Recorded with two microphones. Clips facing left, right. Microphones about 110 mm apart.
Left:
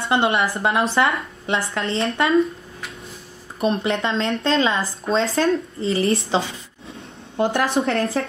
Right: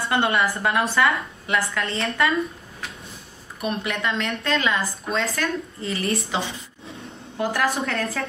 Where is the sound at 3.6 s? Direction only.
30° left (ahead or behind).